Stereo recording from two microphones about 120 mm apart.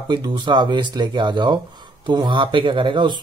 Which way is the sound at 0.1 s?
40° right (ahead or behind).